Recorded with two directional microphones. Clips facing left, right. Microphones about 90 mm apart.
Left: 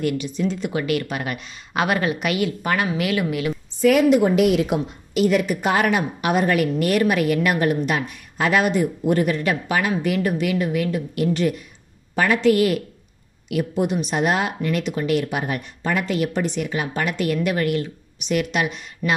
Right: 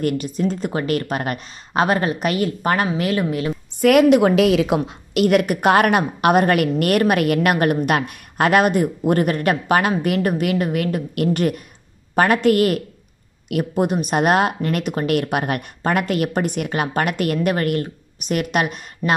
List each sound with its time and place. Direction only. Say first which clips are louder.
0.0 s speech: right 2 dB; 45° right (ahead or behind)
3.8 s a woman's voice: right 3 dB; 75° right (ahead or behind); by 19.1 s 50° right (ahead or behind)